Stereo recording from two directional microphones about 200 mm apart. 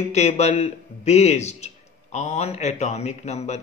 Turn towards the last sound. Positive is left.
turn(degrees=35)  # may be behind; listen again after turning